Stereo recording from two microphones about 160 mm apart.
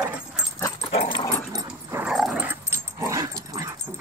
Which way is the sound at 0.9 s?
30° left (ahead or behind).